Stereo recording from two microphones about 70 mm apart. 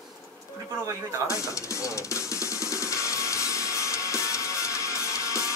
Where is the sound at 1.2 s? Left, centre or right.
Left.